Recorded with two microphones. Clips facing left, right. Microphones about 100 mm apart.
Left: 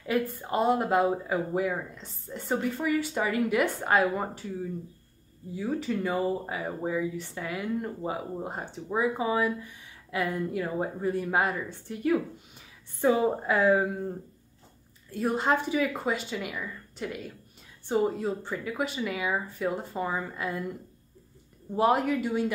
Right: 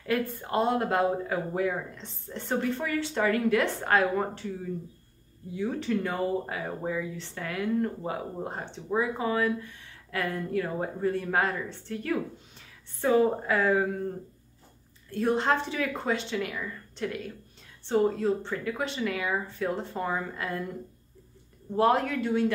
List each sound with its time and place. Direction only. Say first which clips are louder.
0.0 s speech: left 1 dB; 5° left (ahead or behind)
5.5 s speech: right 1 dB; 5° left (ahead or behind)
15.0 s speech: right 1 dB; 5° left (ahead or behind)
21.7 s speech: even; 10° left (ahead or behind)